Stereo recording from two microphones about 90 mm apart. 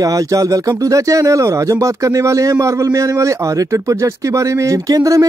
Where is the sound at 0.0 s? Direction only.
40° right (ahead or behind).